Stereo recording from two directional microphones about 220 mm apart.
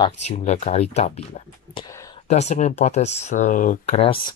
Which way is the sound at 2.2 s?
30° left (ahead or behind).